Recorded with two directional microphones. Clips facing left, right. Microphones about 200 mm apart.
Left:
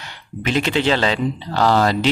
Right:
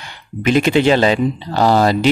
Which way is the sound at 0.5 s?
10° right (ahead or behind).